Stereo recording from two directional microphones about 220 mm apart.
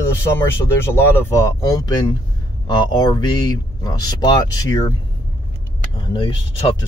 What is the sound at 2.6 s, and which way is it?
Speech, 20° left (ahead or behind).